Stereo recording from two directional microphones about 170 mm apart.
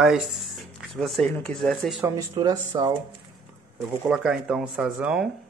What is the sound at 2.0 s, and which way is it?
Speech, 20° right (ahead or behind).